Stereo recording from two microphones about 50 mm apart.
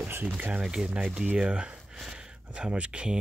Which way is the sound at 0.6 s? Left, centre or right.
Centre.